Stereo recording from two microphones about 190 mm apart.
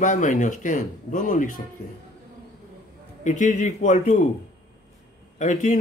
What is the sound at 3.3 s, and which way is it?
Speech, 40° left (ahead or behind).